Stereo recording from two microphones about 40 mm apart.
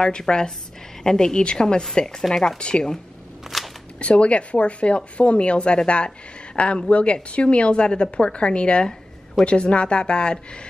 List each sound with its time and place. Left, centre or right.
0.0 s speech: centre
3.4 s a sound: centre
4.0 s a woman's voice: left